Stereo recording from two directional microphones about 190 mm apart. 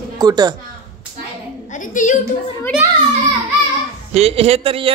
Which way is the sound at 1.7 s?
45° left (ahead or behind).